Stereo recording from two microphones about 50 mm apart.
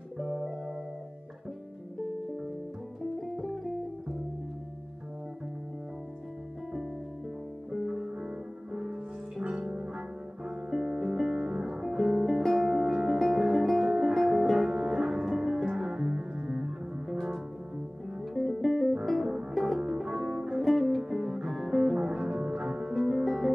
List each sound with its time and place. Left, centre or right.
0.2 s music: centre
3.2 s music: centre
7.7 s music: centre
9.4 s music: right; by 12.7 s centre
12.7 s music: centre
13.8 s music: centre
14.8 s music: centre
18.3 s music: centre
19.8 s music: centre
23.2 s music: centre